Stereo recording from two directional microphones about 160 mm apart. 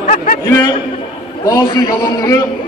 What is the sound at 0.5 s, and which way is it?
A man's voice, 15° left (ahead or behind).